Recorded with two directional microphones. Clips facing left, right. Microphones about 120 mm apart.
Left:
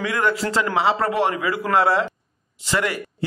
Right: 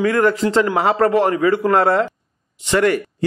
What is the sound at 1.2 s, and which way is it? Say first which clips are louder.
Speech: right 6 dB; 35° right (ahead or behind).